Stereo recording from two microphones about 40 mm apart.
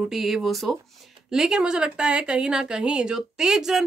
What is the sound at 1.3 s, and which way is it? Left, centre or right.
Speech, centre.